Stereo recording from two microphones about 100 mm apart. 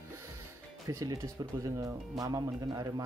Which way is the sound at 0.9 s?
35° right (ahead or behind).